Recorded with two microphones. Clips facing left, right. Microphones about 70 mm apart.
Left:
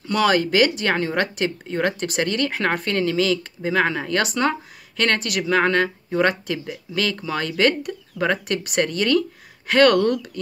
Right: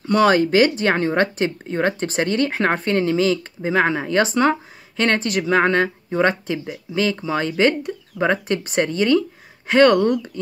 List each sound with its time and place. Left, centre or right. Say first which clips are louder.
0.0 s speech: right 4 dB; right